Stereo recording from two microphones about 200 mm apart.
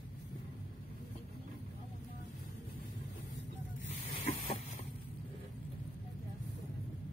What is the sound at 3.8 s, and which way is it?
Snake, 30° left (ahead or behind).